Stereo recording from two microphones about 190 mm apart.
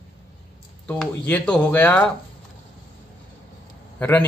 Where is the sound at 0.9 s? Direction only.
5° left (ahead or behind).